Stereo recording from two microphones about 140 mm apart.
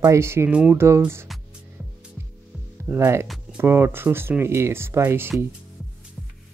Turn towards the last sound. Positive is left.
turn(degrees=-15)  # may be behind; listen again after turning